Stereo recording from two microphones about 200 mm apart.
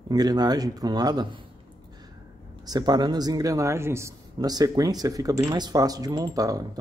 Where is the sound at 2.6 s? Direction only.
20° right (ahead or behind).